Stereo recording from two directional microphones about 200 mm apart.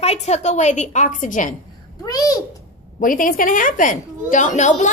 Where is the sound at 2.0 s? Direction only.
20° left (ahead or behind).